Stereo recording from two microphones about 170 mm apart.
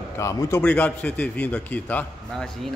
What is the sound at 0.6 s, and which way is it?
A man's voice, 10° left (ahead or behind).